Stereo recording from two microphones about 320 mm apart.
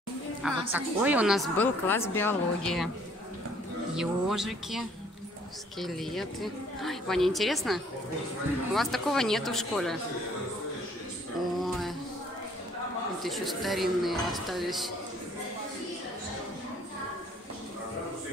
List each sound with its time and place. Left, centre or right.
0.4 s a woman's voice: centre
3.9 s a woman's voice: centre
11.5 s a sound: centre
13.2 s a woman's voice: centre